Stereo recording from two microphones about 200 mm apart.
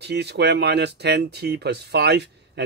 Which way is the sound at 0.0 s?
55° right (ahead or behind).